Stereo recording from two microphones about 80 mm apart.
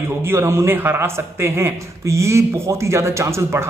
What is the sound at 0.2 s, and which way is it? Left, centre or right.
Speech, right.